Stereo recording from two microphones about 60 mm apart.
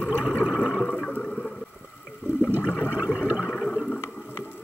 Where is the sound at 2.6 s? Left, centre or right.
Right.